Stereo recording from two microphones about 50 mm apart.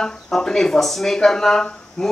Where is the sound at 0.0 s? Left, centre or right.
Centre.